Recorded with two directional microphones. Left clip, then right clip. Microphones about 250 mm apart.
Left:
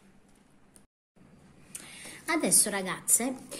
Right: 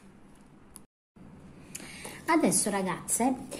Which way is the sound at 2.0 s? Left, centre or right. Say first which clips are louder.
Right 4 dB; centre.